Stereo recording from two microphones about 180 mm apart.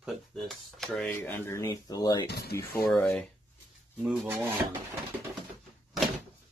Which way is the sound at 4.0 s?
10° right (ahead or behind).